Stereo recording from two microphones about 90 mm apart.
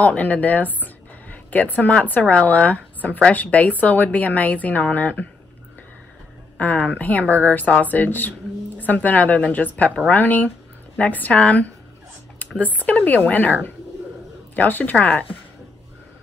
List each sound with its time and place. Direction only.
0.0 s speech: 15° left (ahead or behind)
6.6 s speech: 15° left (ahead or behind)